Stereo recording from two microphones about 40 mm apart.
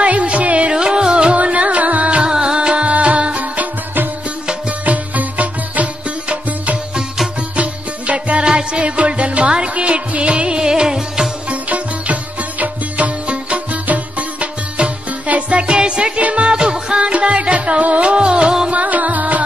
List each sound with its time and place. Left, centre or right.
0.0 s music: right
0.7 s music: right
2.3 s music: centre
2.8 s music: right
4.6 s music: right; by 11.2 s centre
11.7 s music: right
18.7 s music: right